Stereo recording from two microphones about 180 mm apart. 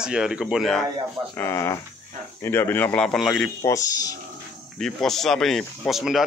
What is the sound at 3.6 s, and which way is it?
Speech, 20° left (ahead or behind).